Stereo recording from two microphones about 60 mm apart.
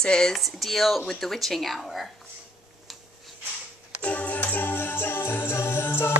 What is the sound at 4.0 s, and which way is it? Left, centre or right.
Music, left.